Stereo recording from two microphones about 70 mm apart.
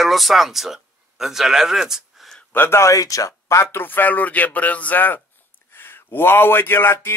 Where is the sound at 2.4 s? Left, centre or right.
Left.